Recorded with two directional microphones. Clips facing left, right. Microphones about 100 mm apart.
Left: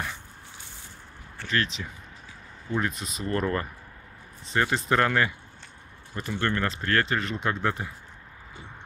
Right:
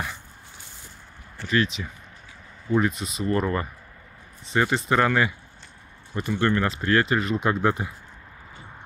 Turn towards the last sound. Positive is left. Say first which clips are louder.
# right 5 dB
turn(degrees=-15)  # may be behind; listen again after turning